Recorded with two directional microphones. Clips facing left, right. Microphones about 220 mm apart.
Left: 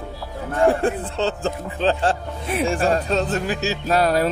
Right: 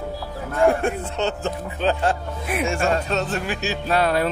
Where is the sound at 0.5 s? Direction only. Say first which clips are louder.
Left 1 dB; 35° left (ahead or behind).